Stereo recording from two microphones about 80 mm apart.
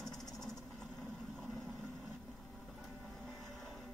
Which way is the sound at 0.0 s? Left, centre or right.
Centre.